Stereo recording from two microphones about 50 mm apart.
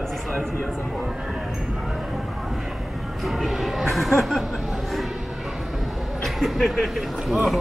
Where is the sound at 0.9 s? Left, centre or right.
Centre.